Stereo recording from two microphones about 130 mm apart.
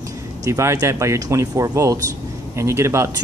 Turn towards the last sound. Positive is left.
turn(degrees=-20)  # may be behind; listen again after turning